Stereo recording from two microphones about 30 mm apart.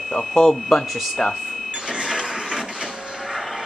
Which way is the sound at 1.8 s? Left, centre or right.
Right.